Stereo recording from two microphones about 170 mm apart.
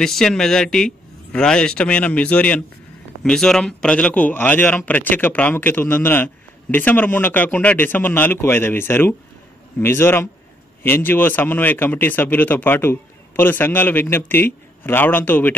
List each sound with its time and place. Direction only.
0.0 s a man's voice: 5° left (ahead or behind)